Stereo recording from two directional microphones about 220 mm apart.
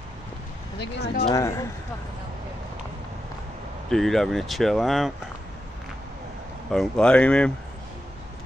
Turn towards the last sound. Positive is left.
turn(degrees=5)  # may be behind; listen again after turning